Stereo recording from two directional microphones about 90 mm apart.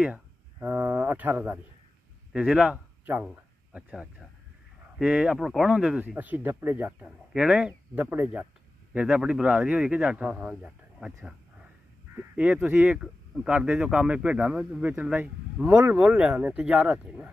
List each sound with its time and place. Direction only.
0.0 s a sound: 15° right (ahead or behind)
2.3 s speech: 10° right (ahead or behind)
7.3 s speech: 10° right (ahead or behind)
9.0 s speech: 10° right (ahead or behind)
12.2 s speech: 15° right (ahead or behind)
13.0 s speech: 10° right (ahead or behind)